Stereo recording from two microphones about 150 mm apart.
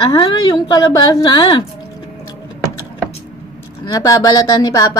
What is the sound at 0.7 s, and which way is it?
Speech, 25° left (ahead or behind).